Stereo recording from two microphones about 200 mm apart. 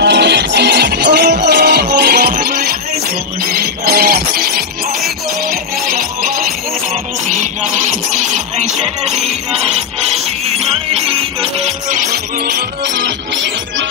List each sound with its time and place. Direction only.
0.0 s music: 60° right (ahead or behind); by 6.3 s 45° right (ahead or behind)
8.1 s music: 35° right (ahead or behind)
12.4 s music: 60° right (ahead or behind)